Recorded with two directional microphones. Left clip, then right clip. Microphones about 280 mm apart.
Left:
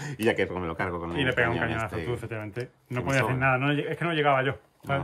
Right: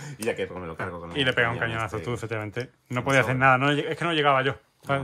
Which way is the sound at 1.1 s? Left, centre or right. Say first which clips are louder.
Right 3 dB; centre.